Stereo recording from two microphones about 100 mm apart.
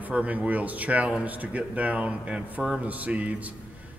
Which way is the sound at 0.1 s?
15° right (ahead or behind).